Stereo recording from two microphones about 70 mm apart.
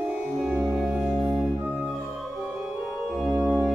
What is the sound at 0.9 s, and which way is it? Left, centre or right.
Music, centre.